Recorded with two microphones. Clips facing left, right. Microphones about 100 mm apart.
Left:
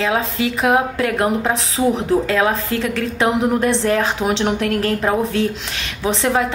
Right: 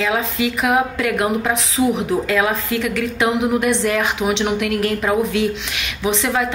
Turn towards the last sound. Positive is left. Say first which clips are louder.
# left 1 dB
turn(degrees=35)  # may be behind; listen again after turning